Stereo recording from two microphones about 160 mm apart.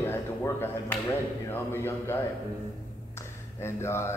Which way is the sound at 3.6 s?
15° left (ahead or behind).